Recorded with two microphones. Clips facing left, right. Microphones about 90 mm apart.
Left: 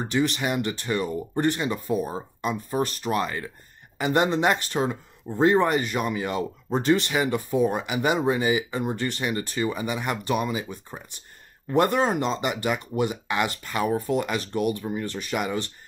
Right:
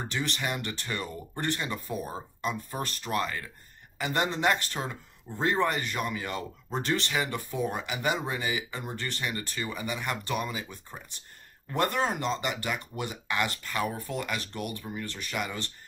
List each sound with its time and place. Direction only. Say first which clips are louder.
0.1 s speech: left 9 dB; 15° left (ahead or behind)